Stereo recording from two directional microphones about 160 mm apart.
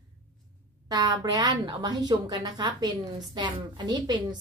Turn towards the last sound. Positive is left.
turn(degrees=-25)  # may be behind; listen again after turning